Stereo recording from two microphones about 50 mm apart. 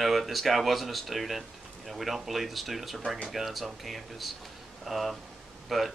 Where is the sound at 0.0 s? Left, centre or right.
Centre.